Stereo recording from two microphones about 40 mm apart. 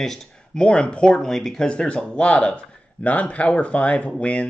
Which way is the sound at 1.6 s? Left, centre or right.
Left.